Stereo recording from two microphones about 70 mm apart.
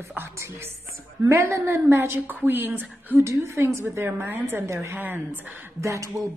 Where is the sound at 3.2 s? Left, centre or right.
Right.